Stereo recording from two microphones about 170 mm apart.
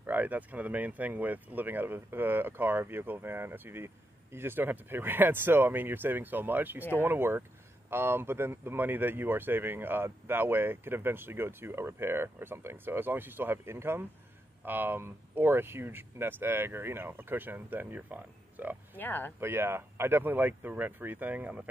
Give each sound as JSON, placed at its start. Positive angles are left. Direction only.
{"t": 0.0, "sound": "speech", "side_deg": -10}
{"t": 18.9, "sound": "speech", "side_deg": 10}
{"t": 19.4, "sound": "speech", "side_deg": -15}